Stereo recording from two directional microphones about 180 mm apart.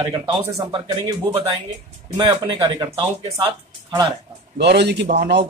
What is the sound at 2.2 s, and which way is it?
Speech, 25° right (ahead or behind).